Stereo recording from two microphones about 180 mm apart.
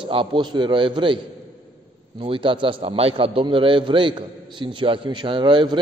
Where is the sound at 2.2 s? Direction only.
30° right (ahead or behind).